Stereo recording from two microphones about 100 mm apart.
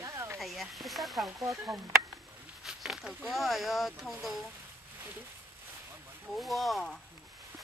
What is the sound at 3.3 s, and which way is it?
Speech, centre (ahead or behind).